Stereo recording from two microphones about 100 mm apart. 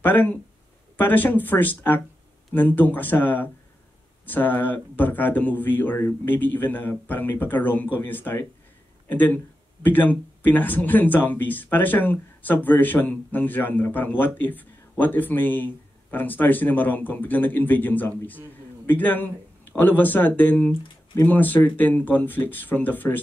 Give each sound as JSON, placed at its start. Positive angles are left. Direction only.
{"t": 0.0, "sound": "speech", "side_deg": 20}